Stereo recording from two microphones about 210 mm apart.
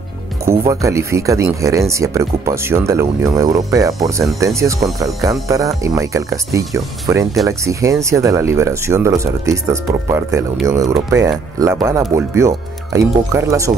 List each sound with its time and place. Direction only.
0.5 s speech: 15° right (ahead or behind)